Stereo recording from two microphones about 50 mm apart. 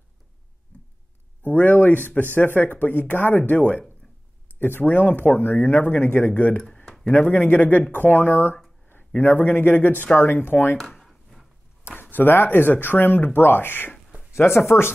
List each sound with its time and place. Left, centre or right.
1.4 s speech: left
11.1 s a sound: centre
11.9 s speech: left
14.3 s speech: left